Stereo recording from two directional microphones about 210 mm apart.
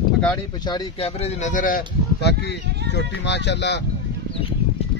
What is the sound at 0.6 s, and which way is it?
Speech, 25° left (ahead or behind).